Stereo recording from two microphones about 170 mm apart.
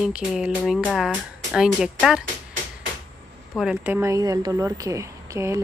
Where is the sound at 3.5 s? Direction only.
5° right (ahead or behind).